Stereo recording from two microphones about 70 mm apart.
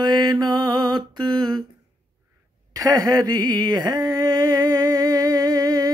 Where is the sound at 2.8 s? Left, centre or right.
Right.